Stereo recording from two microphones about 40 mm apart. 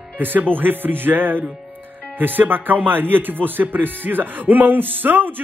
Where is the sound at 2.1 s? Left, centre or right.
Right.